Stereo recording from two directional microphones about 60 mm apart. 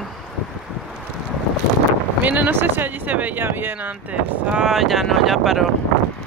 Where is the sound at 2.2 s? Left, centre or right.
Right.